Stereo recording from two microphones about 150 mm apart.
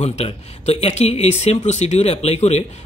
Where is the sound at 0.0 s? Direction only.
45° left (ahead or behind).